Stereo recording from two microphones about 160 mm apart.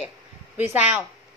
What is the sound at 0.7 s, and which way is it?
Speech, 10° right (ahead or behind).